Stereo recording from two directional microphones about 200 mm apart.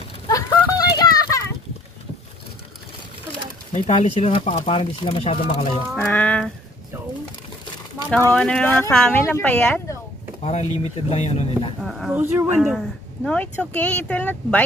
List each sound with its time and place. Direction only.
0.3 s a sound: 15° left (ahead or behind)
3.7 s speech: 35° left (ahead or behind)
5.9 s speech: 10° left (ahead or behind)
8.1 s speech: 5° left (ahead or behind)
10.4 s speech: 35° left (ahead or behind)
11.8 s speech: centre (ahead or behind)
12.7 s speech: 5° left (ahead or behind)